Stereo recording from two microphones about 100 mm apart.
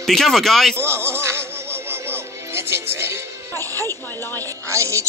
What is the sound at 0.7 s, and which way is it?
Music, 25° right (ahead or behind).